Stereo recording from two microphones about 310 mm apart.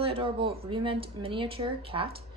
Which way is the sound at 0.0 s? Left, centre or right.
Centre.